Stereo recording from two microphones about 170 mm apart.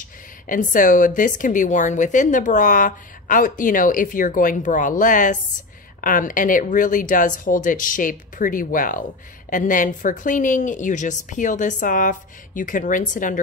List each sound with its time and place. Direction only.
0.5 s a woman's voice: 50° left (ahead or behind)